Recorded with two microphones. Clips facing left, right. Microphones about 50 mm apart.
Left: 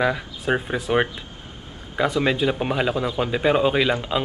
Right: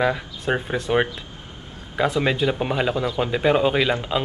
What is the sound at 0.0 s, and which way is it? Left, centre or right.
A man's voice, centre.